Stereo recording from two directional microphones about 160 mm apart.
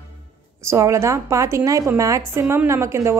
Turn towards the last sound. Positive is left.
turn(degrees=-15)  # may be behind; listen again after turning